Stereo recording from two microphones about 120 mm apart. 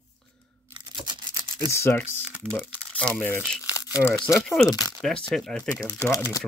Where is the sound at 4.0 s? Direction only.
20° left (ahead or behind).